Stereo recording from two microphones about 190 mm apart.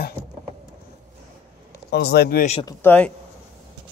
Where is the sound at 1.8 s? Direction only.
60° left (ahead or behind).